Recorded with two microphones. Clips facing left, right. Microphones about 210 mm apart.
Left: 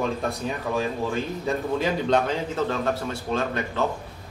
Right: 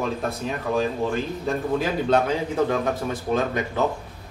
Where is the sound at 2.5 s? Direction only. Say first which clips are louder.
Right 4 dB; 15° right (ahead or behind).